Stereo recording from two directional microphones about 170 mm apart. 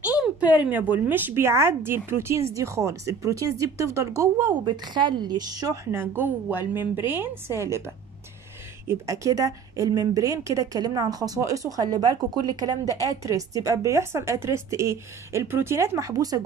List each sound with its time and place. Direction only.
0.0 s a woman's voice: 10° right (ahead or behind)